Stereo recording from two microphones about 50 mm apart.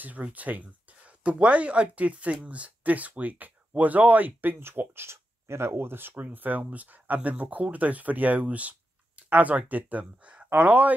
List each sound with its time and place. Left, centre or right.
0.0 s speech: right
6.2 s speech: right